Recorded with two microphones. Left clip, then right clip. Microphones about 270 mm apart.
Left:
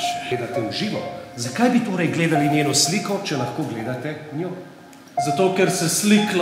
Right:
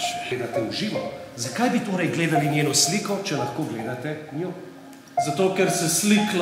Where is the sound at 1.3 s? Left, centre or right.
Right.